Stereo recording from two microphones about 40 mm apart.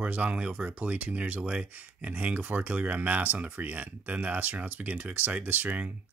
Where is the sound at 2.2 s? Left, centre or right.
Right.